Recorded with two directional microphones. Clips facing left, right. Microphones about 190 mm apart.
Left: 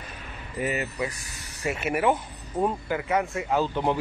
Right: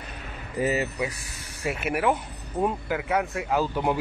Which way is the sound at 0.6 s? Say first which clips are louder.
Right 3 dB; 30° right (ahead or behind).